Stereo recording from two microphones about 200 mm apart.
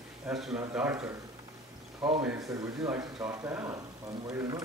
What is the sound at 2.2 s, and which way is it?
Speech, 10° right (ahead or behind).